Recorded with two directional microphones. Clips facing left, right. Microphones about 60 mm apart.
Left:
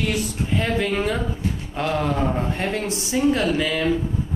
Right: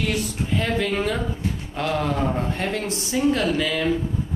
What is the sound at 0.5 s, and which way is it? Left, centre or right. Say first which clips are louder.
Speech: left 1 dB; centre.